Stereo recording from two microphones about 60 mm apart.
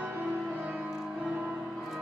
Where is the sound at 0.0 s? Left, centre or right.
Right.